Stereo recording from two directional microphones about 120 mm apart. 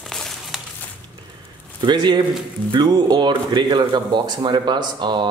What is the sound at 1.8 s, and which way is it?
Speech, 35° right (ahead or behind).